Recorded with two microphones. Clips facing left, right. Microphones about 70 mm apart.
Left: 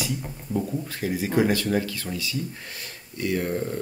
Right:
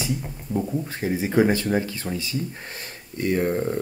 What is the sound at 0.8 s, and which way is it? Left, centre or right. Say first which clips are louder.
Speech: right 2 dB; right.